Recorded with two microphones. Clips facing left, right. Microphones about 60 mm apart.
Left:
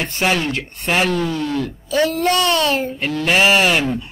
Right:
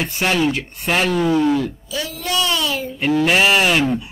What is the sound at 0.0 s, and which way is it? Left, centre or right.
Speech, centre.